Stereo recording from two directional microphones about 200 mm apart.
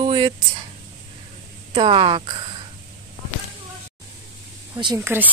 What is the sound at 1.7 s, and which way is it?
Speech, 25° right (ahead or behind).